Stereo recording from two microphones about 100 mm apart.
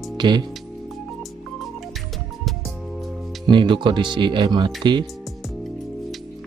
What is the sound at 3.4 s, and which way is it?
Speech, 55° right (ahead or behind).